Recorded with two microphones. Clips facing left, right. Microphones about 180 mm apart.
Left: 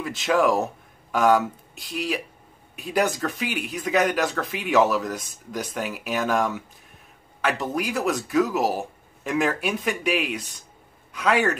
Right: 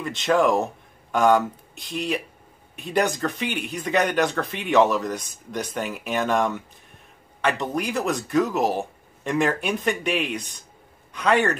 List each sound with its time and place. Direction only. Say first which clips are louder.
0.0 s speech: right 1 dB; 5° left (ahead or behind)